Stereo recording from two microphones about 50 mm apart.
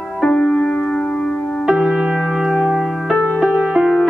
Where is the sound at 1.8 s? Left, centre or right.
Centre.